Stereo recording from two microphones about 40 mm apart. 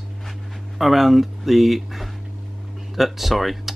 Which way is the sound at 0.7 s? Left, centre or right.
Centre.